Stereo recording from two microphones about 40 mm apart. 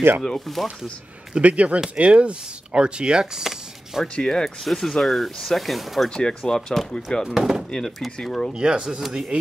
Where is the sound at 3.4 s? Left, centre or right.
Centre.